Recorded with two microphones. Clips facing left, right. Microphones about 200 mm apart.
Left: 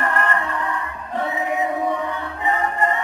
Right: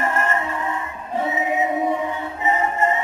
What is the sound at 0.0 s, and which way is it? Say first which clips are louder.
Music: even; 20° right (ahead or behind).